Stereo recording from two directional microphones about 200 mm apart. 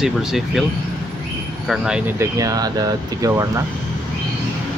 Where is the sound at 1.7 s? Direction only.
5° right (ahead or behind).